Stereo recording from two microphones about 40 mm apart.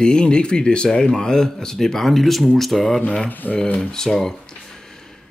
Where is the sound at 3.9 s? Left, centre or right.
Centre.